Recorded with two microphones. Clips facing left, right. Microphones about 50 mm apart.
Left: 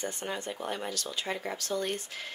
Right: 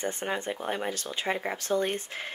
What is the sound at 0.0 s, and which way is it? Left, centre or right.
Speech, right.